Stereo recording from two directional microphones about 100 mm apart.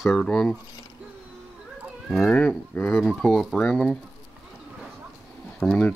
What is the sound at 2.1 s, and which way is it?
Speech, 10° left (ahead or behind).